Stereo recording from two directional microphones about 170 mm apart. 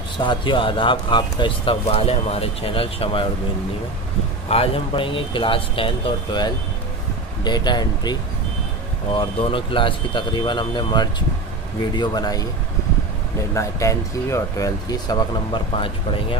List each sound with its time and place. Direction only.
0.2 s speech: 30° left (ahead or behind)
4.5 s speech: 35° left (ahead or behind)
13.6 s speech: 15° left (ahead or behind)